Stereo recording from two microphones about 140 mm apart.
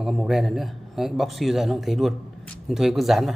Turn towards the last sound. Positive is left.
turn(degrees=0)  # may be behind; listen again after turning